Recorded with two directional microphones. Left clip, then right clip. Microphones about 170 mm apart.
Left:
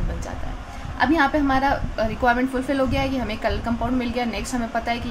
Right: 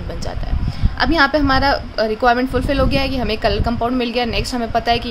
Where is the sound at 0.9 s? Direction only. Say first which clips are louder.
Right 4 dB; 55° right (ahead or behind).